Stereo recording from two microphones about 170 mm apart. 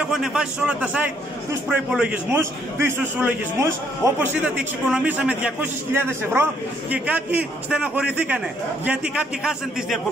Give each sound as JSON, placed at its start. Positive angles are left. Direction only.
{"t": 0.0, "sound": "a man's voice", "side_deg": -5}